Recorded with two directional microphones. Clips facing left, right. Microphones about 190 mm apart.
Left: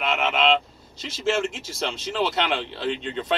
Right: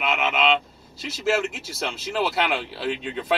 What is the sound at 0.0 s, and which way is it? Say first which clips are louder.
Vehicle: left 1 dB; 5° right (ahead or behind).